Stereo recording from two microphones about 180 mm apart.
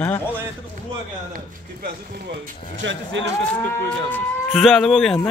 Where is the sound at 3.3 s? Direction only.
10° left (ahead or behind).